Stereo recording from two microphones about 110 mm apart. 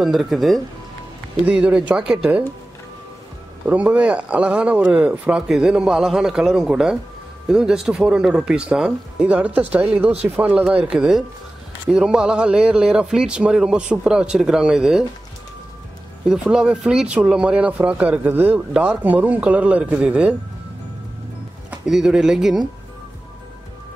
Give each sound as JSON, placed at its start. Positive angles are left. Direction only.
{"t": 0.0, "sound": "speech", "side_deg": 0}
{"t": 3.6, "sound": "speech", "side_deg": -15}
{"t": 16.3, "sound": "speech", "side_deg": -5}
{"t": 21.6, "sound": "speech", "side_deg": -5}